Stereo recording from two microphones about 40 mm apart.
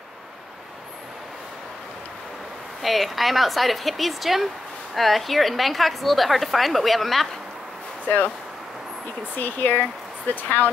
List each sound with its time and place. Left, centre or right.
2.8 s a woman's voice: centre
9.3 s speech: left